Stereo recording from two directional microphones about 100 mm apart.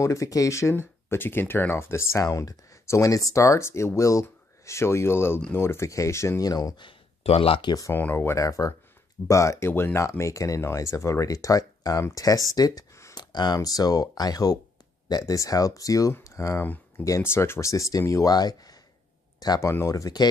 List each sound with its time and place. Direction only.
0.0 s speech: 30° left (ahead or behind)
6.9 s a sound: 70° left (ahead or behind)
7.6 s speech: 35° left (ahead or behind)
7.9 s speech: 20° left (ahead or behind); by 19.7 s 45° left (ahead or behind)
19.7 s speech: 30° left (ahead or behind)